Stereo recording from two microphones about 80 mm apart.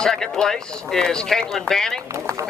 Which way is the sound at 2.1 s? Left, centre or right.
Right.